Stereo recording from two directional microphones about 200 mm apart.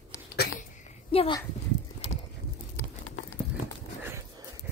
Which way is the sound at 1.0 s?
25° left (ahead or behind).